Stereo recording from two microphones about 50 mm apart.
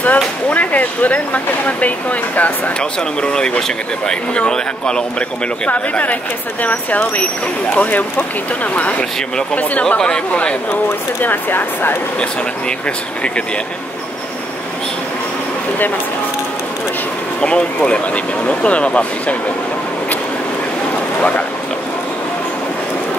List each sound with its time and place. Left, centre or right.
0.0 s speech: left
2.8 s speech: centre
5.7 s speech: left
9.6 s speech: left
9.9 s speech: centre
11.2 s speech: left
17.4 s speech: left